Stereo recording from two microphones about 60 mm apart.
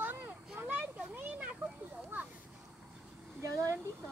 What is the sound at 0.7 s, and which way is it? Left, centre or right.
Children playing, right.